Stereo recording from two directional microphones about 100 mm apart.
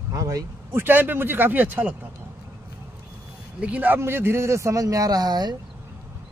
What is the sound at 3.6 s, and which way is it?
A man's voice, 15° right (ahead or behind).